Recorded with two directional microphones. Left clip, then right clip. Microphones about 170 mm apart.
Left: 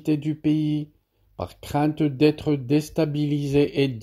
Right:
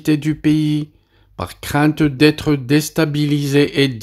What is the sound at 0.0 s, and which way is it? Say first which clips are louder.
Speech: right 7 dB; 10° right (ahead or behind).